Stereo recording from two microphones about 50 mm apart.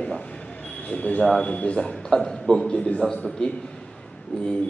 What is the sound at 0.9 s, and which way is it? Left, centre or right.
Speech, left.